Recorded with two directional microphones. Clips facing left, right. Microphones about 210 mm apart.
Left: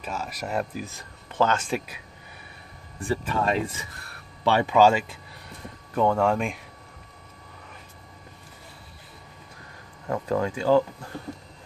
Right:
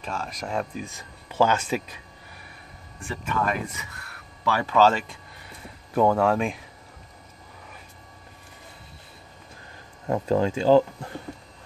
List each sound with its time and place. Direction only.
0.0 s speech: 5° left (ahead or behind)
3.0 s speech: 35° left (ahead or behind)
4.7 s speech: 10° left (ahead or behind)
10.0 s speech: 25° right (ahead or behind)